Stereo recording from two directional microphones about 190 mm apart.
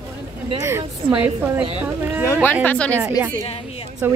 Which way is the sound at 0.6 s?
15° right (ahead or behind).